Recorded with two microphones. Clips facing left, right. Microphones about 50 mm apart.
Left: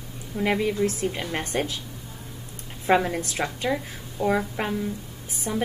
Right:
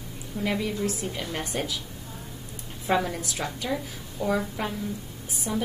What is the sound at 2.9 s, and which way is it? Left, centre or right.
Speech, left.